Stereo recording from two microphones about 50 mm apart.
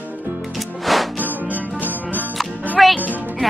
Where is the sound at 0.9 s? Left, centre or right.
Centre.